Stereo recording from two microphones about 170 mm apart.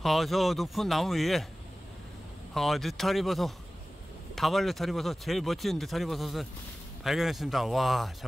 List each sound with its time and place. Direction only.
0.0 s speech: centre (ahead or behind)
2.5 s speech: centre (ahead or behind)